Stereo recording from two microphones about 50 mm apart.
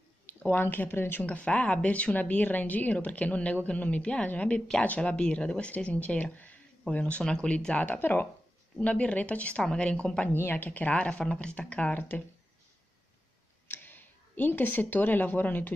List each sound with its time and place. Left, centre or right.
0.3 s speech: left
1.2 s speech: left
4.8 s speech: left
8.0 s a woman's voice: left
8.7 s speech: left
10.3 s a woman's voice: left
11.1 s speech: centre
13.7 s speech: left